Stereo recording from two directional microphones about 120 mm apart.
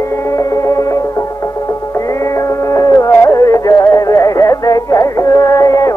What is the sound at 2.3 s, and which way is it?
Music, 25° left (ahead or behind).